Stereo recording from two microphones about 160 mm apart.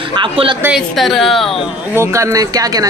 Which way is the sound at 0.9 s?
Centre (ahead or behind).